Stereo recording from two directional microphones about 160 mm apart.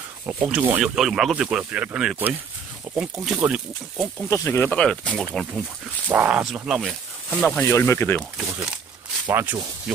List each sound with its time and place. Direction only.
0.3 s speech: 10° right (ahead or behind)
4.3 s speech: 20° left (ahead or behind)
4.6 s speech: 5° left (ahead or behind)
6.0 s speech: 10° right (ahead or behind); by 8.2 s 15° left (ahead or behind)
8.2 s speech: 5° right (ahead or behind)